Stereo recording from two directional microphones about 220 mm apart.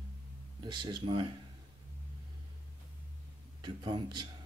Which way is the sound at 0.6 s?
20° right (ahead or behind).